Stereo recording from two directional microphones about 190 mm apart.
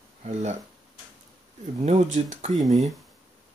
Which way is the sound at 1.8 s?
35° right (ahead or behind).